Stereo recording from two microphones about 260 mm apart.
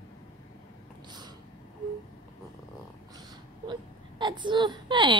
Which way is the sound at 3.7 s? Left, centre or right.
Centre.